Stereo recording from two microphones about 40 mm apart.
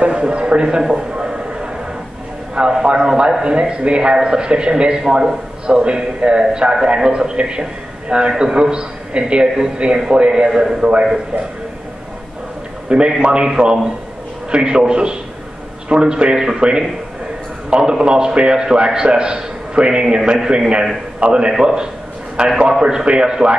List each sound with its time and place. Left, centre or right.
0.2 s speech: right
1.2 s a sound: centre
3.4 s a man's voice: right
10.5 s a man's voice: centre
10.8 s a man's voice: right
12.9 s a man's voice: right